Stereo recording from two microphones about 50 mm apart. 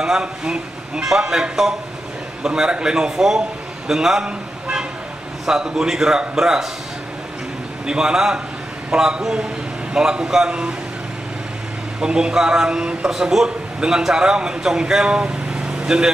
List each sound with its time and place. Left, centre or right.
0.0 s a man's voice: centre
7.8 s a man's voice: centre
12.0 s a man's voice: centre